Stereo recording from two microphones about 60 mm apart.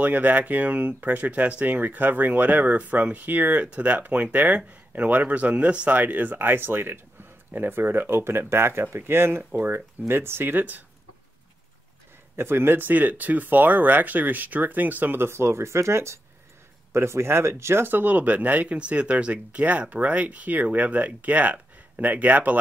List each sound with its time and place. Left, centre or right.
0.0 s speech: right
9.4 s speech: right
12.4 s speech: right